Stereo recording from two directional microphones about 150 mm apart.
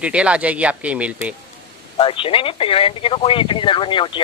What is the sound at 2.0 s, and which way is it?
Speech, 35° left (ahead or behind).